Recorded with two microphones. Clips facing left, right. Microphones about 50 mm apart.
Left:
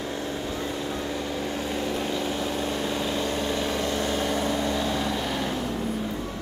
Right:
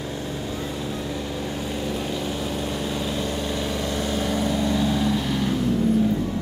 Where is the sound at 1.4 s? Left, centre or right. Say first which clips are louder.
Even; centre.